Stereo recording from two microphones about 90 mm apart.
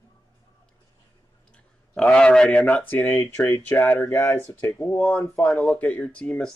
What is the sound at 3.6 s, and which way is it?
Speech, 25° left (ahead or behind).